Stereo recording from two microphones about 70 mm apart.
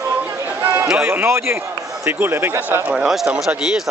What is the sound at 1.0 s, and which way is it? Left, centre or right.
Speech, right.